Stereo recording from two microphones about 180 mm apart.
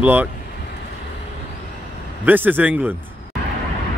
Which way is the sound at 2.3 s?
10° right (ahead or behind).